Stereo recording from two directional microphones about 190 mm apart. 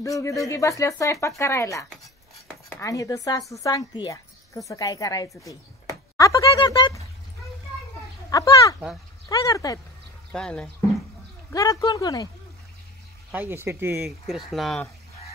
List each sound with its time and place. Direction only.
0.0 s speech: 15° left (ahead or behind)
5.4 s a sound: 15° left (ahead or behind)
8.3 s speech: 20° left (ahead or behind)
10.3 s speech: 5° left (ahead or behind)
11.5 s speech: 20° left (ahead or behind)
13.3 s speech: 10° right (ahead or behind)
14.0 s speech: centre (ahead or behind)